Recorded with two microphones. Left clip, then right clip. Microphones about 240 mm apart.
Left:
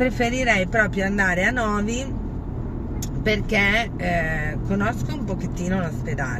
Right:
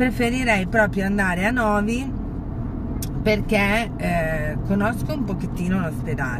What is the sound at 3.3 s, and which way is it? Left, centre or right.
Speech, centre.